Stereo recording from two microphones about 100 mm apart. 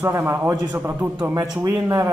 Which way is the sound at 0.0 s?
25° right (ahead or behind).